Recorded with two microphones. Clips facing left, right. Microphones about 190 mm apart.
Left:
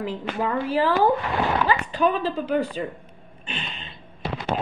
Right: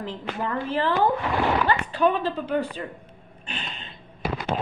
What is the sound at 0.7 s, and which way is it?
Speech, 10° left (ahead or behind).